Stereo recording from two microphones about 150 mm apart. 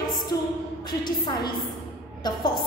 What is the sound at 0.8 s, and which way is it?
A woman's voice, 30° left (ahead or behind).